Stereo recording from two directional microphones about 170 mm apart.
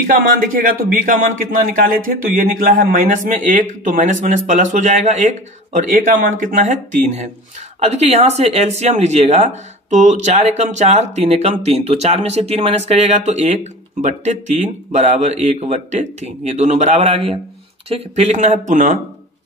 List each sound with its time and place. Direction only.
0.0 s a man's voice: 55° right (ahead or behind)